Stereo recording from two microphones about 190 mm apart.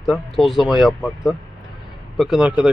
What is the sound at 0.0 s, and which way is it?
Speech, centre (ahead or behind).